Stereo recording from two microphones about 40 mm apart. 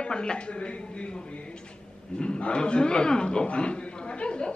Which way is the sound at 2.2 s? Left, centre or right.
Left.